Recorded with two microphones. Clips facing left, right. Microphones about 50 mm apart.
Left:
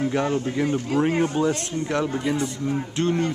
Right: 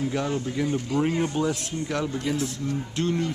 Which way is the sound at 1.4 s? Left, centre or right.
Centre.